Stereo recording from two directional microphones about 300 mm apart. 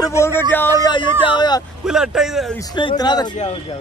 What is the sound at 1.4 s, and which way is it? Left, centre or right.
Speech, centre.